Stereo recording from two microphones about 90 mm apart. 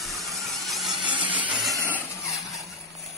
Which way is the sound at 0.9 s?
65° right (ahead or behind).